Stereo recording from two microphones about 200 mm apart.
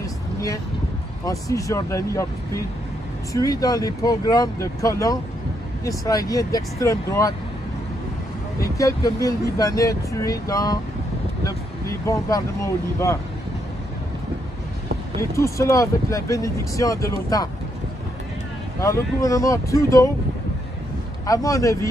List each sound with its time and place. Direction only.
1.2 s speech: 15° left (ahead or behind)
3.6 s speech: 20° left (ahead or behind)
8.6 s speech: 15° left (ahead or behind)
12.1 s speech: 15° left (ahead or behind)
15.3 s speech: 15° left (ahead or behind)
18.8 s speech: 15° left (ahead or behind)
21.3 s speech: 15° left (ahead or behind)